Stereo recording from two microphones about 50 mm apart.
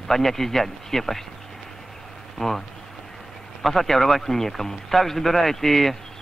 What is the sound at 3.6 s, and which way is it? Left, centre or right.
Speech, centre.